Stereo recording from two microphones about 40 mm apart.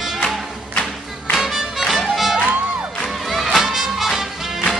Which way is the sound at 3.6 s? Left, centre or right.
Centre.